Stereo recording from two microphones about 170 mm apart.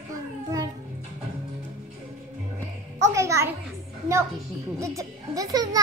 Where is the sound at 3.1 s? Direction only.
20° right (ahead or behind).